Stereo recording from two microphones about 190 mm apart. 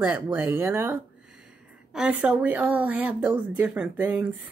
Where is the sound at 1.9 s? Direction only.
5° right (ahead or behind).